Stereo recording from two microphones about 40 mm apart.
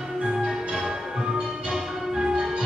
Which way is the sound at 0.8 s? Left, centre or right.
Centre.